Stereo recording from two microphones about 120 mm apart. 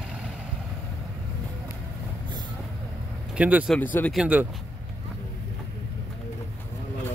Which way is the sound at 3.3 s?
10° right (ahead or behind).